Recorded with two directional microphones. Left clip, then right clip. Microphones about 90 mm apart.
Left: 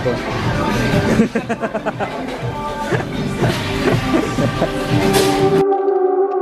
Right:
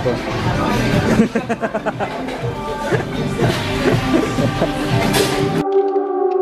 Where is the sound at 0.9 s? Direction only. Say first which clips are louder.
Left 1 dB; 30° left (ahead or behind).